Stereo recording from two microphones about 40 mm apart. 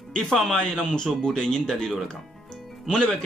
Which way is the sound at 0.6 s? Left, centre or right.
Centre.